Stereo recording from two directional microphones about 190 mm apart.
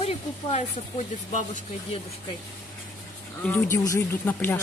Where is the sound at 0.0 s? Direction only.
35° left (ahead or behind).